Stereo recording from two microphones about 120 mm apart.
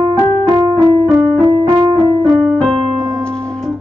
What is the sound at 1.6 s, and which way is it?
Keyboard, 40° right (ahead or behind).